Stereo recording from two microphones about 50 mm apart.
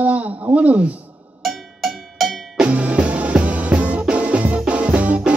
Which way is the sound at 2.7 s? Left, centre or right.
Right.